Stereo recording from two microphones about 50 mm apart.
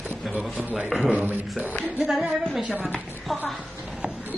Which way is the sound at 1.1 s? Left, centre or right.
Right.